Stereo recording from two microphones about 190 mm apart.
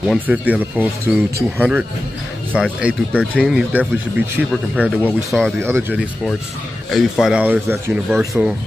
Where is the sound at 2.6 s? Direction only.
5° right (ahead or behind).